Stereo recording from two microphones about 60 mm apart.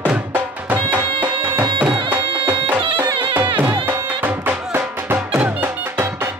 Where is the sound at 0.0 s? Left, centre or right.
Right.